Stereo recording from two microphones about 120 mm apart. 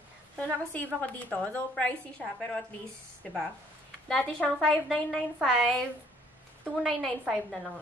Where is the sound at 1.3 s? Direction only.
10° left (ahead or behind).